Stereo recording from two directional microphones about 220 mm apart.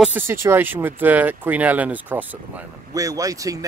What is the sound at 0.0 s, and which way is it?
Speech, 10° right (ahead or behind).